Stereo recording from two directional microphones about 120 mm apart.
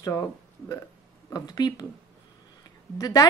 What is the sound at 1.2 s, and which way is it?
Speech, 30° left (ahead or behind).